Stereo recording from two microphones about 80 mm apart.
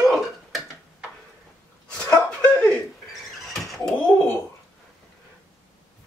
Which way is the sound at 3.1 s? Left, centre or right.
Centre.